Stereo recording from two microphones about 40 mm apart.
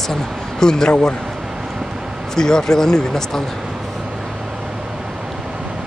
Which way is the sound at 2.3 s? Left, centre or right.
Centre.